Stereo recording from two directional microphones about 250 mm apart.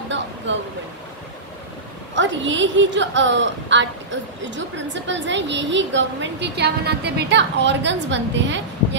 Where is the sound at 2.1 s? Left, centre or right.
Right.